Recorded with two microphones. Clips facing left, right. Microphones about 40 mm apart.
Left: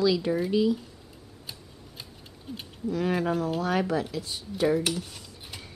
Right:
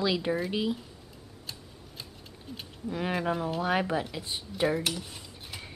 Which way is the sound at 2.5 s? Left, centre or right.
Centre.